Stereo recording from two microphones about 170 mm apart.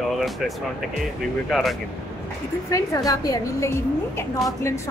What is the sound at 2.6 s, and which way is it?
A woman's voice, 20° left (ahead or behind).